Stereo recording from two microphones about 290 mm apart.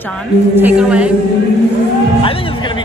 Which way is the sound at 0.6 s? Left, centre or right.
Centre.